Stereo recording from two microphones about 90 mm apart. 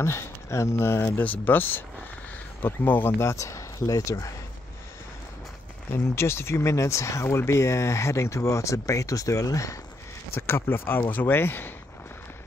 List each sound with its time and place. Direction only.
0.0 s speech: 30° left (ahead or behind)
1.2 s speech: 20° left (ahead or behind); by 4.3 s 35° left (ahead or behind)
5.9 s speech: 30° left (ahead or behind)
10.3 s speech: 25° left (ahead or behind)